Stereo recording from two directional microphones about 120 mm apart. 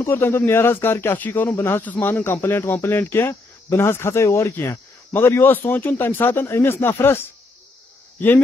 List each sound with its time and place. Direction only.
0.0 s speech: 20° left (ahead or behind)